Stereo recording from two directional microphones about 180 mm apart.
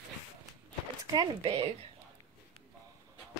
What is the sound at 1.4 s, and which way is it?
Speech, 30° right (ahead or behind).